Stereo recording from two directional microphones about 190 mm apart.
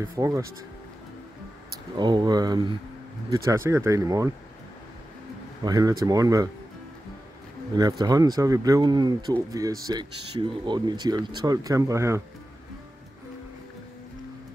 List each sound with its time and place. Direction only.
0.1 s speech: 15° right (ahead or behind)
2.0 s speech: 25° right (ahead or behind)
5.6 s speech: 20° right (ahead or behind)
8.0 s speech: 20° right (ahead or behind)